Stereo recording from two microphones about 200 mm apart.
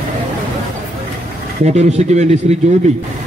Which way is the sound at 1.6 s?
30° right (ahead or behind).